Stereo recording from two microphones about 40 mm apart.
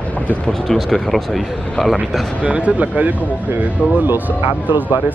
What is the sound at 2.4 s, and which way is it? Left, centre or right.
Speech, right.